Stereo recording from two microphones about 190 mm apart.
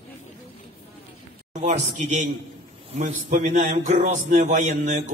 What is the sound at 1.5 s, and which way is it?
A man's voice, 40° right (ahead or behind).